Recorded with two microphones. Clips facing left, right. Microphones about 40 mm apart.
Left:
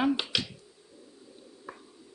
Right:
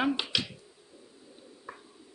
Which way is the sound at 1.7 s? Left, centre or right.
Centre.